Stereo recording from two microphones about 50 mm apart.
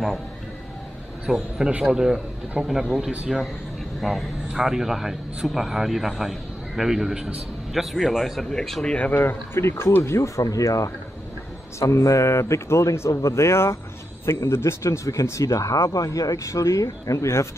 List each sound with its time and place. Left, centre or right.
1.3 s a man's voice: centre
3.0 s a man's voice: right
4.0 s speech: centre
8.5 s speech: centre
8.8 s speech: left
9.2 s speech: left
9.6 s speech: left
10.0 s speech: left